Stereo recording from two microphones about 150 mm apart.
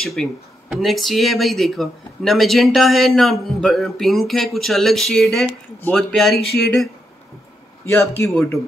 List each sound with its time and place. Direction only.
0.0 s speech: centre (ahead or behind)
6.3 s speech: 90° left
8.1 s a man's voice: 15° left (ahead or behind)